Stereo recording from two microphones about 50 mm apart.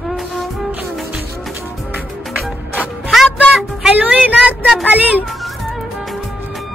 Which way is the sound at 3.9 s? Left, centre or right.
Right.